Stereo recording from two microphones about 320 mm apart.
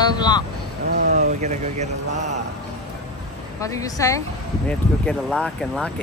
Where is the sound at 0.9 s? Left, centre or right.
Right.